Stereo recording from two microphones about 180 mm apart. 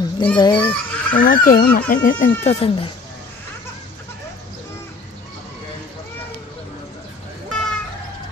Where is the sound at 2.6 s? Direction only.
30° left (ahead or behind).